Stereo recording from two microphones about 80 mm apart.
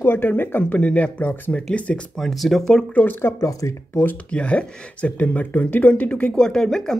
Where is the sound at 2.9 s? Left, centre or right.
Left.